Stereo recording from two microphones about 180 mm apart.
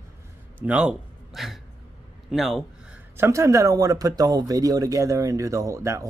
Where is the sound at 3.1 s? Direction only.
15° right (ahead or behind).